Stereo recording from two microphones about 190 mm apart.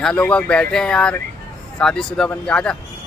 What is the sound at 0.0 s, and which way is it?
Speech, 5° left (ahead or behind).